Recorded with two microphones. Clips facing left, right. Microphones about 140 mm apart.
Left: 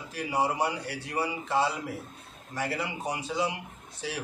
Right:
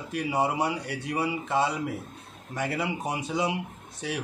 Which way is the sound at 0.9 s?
25° right (ahead or behind).